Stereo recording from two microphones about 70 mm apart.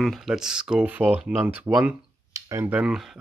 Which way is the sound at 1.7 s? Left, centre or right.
Right.